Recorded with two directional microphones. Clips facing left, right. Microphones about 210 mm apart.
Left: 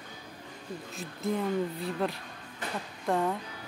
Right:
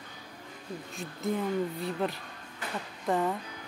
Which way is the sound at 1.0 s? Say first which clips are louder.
Even; centre (ahead or behind).